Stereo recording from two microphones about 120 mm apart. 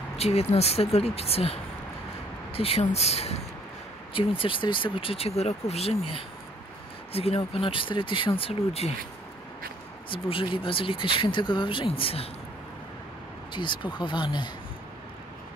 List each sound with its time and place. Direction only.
0.2 s speech: 60° left (ahead or behind)
4.1 s speech: 50° left (ahead or behind)
7.1 s speech: 55° left (ahead or behind)
8.4 s speech: 55° left (ahead or behind)
10.0 s speech: 45° left (ahead or behind)
13.5 s speech: 40° left (ahead or behind)